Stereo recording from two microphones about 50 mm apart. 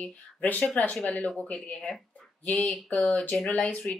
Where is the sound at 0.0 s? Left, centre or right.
Left.